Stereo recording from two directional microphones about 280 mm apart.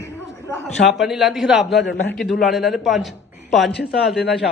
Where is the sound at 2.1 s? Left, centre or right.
Centre.